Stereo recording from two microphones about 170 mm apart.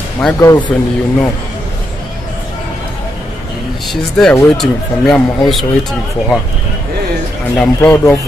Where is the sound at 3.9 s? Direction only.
Centre (ahead or behind).